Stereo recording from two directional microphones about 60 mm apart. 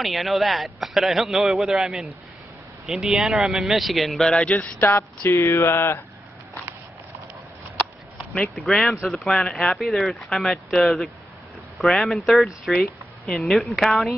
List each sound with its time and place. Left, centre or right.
0.0 s a man's voice: centre
4.4 s speech: left
4.8 s a sound: left
8.5 s a man's voice: centre